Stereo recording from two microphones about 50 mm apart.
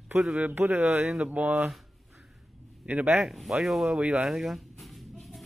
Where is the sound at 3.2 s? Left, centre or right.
Centre.